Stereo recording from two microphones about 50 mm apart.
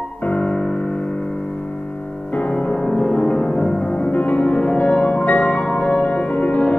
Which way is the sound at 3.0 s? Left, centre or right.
Left.